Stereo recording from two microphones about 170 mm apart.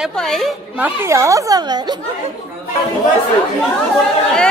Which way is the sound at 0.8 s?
15° right (ahead or behind).